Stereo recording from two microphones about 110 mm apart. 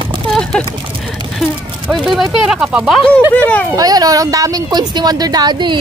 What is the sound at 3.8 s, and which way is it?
Speech, 35° right (ahead or behind).